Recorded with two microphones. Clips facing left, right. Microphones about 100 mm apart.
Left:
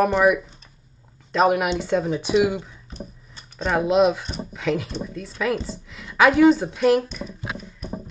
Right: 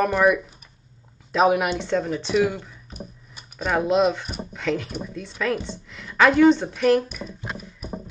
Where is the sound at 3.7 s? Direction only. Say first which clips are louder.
Left 2 dB; centre (ahead or behind).